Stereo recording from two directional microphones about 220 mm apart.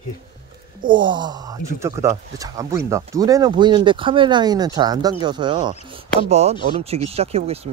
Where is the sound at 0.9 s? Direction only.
20° right (ahead or behind).